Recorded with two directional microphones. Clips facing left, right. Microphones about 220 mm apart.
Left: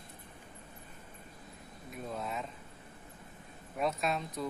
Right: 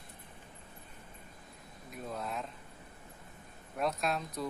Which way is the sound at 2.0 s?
Centre (ahead or behind).